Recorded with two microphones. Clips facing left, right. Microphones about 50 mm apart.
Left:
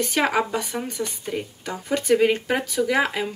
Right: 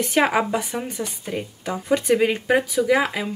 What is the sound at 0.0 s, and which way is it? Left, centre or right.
Speech, centre.